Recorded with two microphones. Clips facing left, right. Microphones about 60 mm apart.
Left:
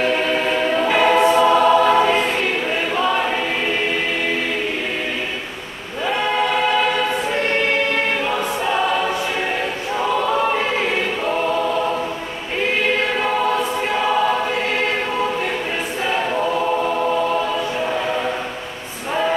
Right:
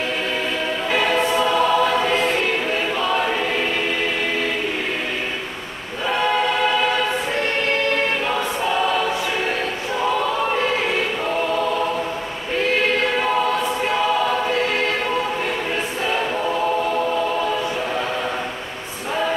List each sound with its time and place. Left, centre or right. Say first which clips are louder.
0.9 s choir: left 4 dB; left